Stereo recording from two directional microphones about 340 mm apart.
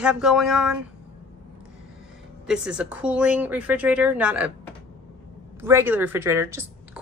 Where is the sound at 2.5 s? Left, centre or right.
Centre.